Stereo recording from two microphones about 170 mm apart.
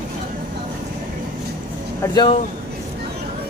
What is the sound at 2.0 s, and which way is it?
Speech, 25° left (ahead or behind).